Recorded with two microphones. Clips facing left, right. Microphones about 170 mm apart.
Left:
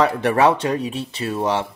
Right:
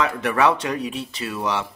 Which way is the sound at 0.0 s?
30° left (ahead or behind).